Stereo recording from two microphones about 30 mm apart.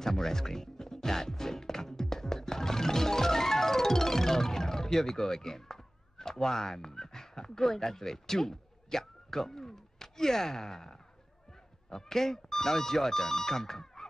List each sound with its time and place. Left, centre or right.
0.0 s music: centre
11.9 s speech: centre